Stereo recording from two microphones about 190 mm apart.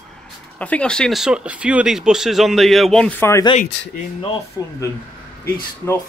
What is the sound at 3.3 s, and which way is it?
Speech, 20° left (ahead or behind).